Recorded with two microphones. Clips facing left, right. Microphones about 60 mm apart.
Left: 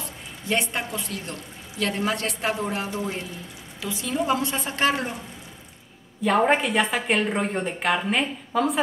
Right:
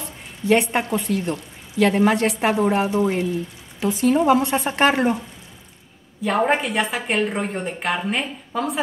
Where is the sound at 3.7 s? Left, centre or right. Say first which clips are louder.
Right 9 dB; right.